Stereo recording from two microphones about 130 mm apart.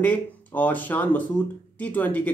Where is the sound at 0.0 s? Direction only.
10° left (ahead or behind).